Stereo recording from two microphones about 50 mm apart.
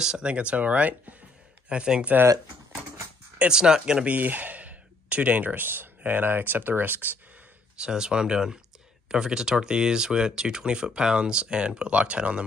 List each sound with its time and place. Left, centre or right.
0.0 s speech: centre
3.3 s speech: centre
4.1 s speech: right
7.7 s speech: centre